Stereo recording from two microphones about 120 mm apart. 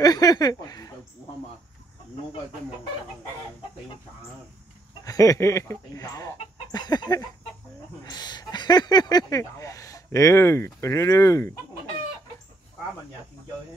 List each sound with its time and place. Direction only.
0.0 s chuckle: 30° left (ahead or behind)
5.0 s speech: 30° left (ahead or behind)